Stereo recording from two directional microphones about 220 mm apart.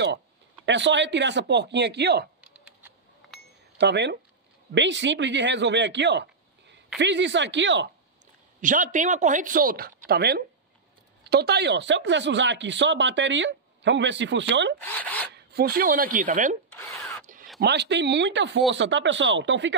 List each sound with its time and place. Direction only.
0.7 s speech: 55° right (ahead or behind)
2.4 s a sound: 5° right (ahead or behind)
3.7 s speech: 50° right (ahead or behind)
8.5 s speech: 35° right (ahead or behind)
14.8 s speech: 5° left (ahead or behind)
15.3 s speech: 45° right (ahead or behind)
16.7 s drill: 5° left (ahead or behind)
17.6 s speech: 50° right (ahead or behind)